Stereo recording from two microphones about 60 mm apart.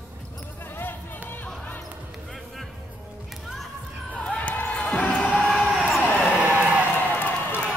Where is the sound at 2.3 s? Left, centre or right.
Centre.